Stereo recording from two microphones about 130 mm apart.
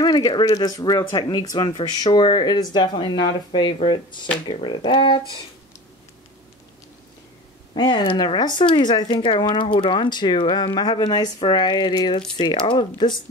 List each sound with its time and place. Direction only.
0.0 s speech: 30° left (ahead or behind)
7.7 s speech: 35° left (ahead or behind)